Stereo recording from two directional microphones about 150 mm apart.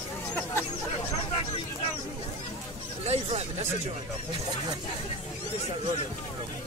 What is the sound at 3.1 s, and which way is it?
Speech, 45° right (ahead or behind).